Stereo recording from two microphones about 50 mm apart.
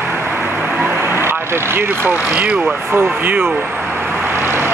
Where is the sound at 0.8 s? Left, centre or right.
Right.